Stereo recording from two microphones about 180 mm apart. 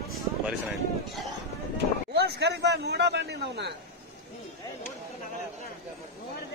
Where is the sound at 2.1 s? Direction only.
70° right (ahead or behind).